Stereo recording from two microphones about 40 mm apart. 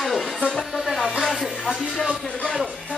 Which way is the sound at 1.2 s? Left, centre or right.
Centre.